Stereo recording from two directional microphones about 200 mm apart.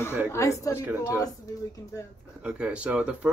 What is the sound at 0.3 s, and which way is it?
Speech, 15° left (ahead or behind).